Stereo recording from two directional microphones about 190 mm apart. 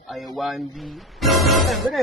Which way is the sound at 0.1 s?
Centre (ahead or behind).